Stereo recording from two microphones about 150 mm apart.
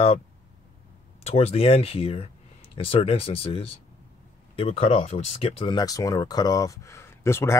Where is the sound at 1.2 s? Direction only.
45° left (ahead or behind).